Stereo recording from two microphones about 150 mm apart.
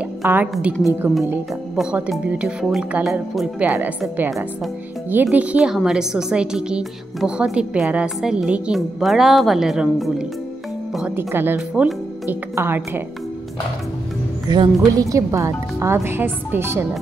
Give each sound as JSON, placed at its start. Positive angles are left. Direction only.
{"t": 0.2, "sound": "speech", "side_deg": -10}
{"t": 1.8, "sound": "speech", "side_deg": -5}
{"t": 5.1, "sound": "a woman's voice", "side_deg": -10}
{"t": 14.5, "sound": "speech", "side_deg": -25}